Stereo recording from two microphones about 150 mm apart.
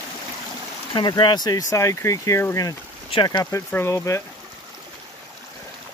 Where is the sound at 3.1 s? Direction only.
30° left (ahead or behind).